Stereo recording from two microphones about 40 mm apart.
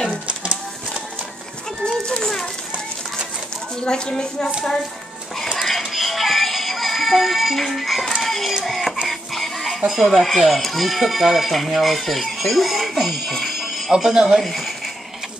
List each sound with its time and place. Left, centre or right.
1.9 s children playing: centre
3.8 s a woman's voice: centre
5.6 s synthetic singing: centre
8.2 s child singing: centre
8.6 s speech: centre
9.3 s a sound: centre
9.7 s speech: centre
13.8 s speech: centre
14.4 s speech: centre